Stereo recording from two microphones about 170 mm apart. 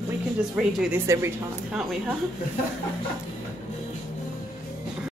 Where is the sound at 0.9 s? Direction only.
15° right (ahead or behind).